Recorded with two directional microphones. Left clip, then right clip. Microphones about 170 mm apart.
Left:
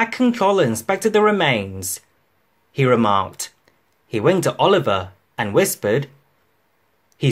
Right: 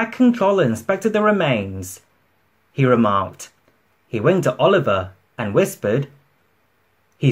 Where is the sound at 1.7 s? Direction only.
40° left (ahead or behind).